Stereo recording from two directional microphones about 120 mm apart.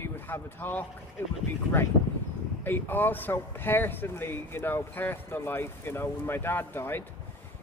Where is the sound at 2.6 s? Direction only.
15° left (ahead or behind).